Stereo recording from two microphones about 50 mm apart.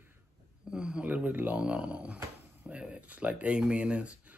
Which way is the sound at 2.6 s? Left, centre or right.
Right.